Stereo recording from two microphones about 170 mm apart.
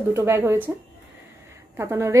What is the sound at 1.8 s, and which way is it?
Speech, 15° right (ahead or behind).